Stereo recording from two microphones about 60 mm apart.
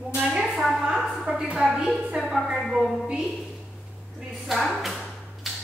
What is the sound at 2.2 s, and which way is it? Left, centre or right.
Speech, centre.